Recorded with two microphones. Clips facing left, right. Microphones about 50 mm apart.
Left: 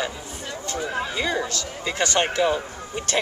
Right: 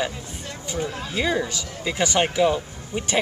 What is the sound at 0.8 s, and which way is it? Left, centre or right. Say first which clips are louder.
Speech: left 1 dB; left.